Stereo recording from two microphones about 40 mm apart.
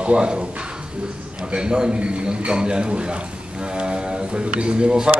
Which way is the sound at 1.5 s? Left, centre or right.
Right.